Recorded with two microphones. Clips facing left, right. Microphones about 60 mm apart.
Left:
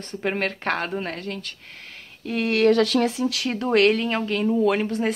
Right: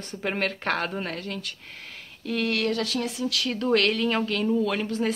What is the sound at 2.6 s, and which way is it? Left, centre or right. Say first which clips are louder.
Speech: left 9 dB; left.